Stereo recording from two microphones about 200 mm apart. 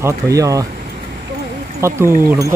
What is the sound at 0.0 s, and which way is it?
Speech, 15° right (ahead or behind).